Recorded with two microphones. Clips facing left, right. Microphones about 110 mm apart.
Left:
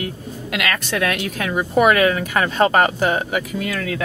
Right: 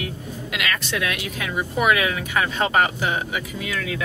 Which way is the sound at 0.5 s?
50° left (ahead or behind).